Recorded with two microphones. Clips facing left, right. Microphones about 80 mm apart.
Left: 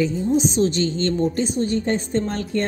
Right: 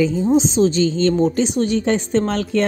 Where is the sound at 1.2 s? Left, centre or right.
Right.